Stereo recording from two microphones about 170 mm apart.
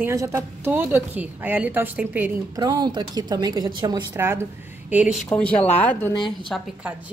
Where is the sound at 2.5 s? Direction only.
25° right (ahead or behind); by 5.2 s 10° right (ahead or behind).